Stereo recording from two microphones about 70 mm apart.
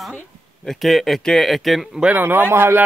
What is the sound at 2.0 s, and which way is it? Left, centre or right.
Speech, right.